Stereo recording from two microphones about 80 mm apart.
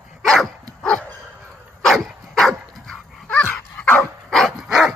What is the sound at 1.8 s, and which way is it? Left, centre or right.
Dog, centre.